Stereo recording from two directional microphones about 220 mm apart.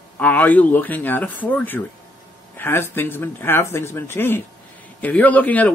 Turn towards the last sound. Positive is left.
turn(degrees=5)  # may be behind; listen again after turning